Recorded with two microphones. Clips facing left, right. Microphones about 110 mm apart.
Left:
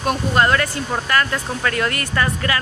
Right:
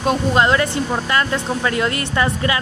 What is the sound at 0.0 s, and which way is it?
Speech, 20° right (ahead or behind).